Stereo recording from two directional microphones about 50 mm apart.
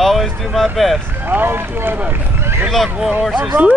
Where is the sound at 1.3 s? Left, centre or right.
Right.